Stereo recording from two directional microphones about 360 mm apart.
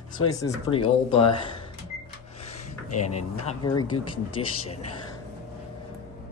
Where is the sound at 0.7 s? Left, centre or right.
Centre.